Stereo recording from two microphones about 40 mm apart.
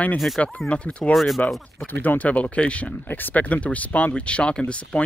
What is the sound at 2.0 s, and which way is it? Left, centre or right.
Speech, left.